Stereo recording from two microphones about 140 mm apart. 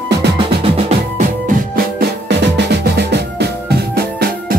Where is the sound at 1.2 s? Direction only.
80° right.